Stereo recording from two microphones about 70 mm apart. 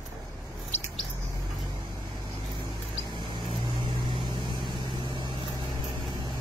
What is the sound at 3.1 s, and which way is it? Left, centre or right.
Vehicle, right.